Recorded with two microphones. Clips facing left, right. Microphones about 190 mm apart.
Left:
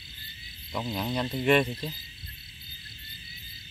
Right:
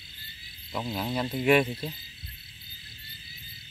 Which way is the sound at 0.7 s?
5° right (ahead or behind).